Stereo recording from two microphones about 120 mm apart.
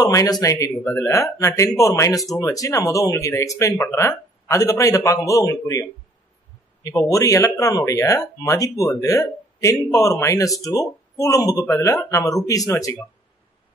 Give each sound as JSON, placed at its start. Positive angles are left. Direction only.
{"t": 0.0, "sound": "speech", "side_deg": 30}